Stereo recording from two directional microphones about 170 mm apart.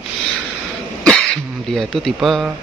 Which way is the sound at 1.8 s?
Centre (ahead or behind).